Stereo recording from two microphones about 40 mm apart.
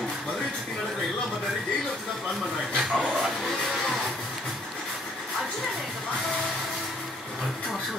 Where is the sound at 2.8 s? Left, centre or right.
Centre.